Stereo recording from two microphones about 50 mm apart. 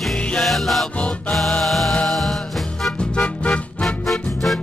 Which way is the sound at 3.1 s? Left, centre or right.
Left.